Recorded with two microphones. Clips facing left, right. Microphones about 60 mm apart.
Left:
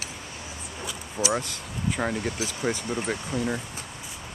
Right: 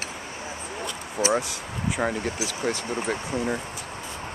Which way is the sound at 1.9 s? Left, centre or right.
Centre.